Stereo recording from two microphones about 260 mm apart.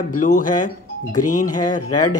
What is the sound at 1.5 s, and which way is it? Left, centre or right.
Speech, centre.